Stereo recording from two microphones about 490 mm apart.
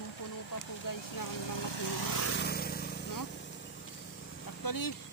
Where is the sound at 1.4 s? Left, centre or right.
Left.